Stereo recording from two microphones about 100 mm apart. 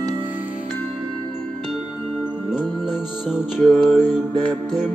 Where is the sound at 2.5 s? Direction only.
5° right (ahead or behind).